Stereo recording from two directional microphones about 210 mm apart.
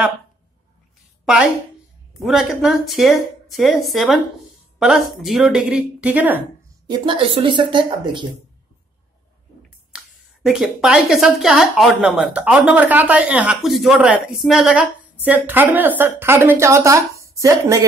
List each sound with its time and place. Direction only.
1.2 s speech: centre (ahead or behind)
6.9 s speech: 25° right (ahead or behind)
9.9 s a woman's voice: 5° right (ahead or behind)